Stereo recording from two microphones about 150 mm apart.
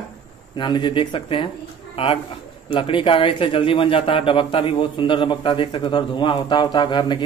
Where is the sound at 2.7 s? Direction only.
35° left (ahead or behind).